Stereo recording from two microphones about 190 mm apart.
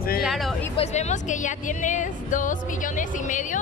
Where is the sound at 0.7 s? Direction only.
35° left (ahead or behind).